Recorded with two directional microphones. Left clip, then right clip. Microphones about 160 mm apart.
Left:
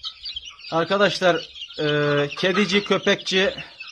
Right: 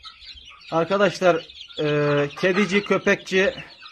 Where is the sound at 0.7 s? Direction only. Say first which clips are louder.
Even; centre (ahead or behind).